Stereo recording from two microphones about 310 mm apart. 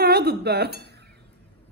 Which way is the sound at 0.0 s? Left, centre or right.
Right.